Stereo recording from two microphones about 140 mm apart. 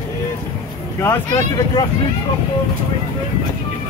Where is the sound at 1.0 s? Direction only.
20° left (ahead or behind).